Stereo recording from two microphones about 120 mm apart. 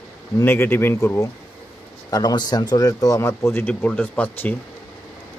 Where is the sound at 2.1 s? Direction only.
35° left (ahead or behind); by 4.5 s 10° left (ahead or behind).